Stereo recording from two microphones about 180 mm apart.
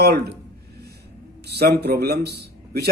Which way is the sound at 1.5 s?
65° right (ahead or behind).